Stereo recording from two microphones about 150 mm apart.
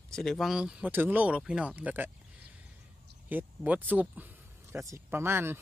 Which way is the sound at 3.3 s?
10° right (ahead or behind).